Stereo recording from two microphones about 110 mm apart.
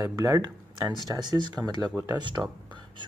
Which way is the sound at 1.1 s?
40° right (ahead or behind).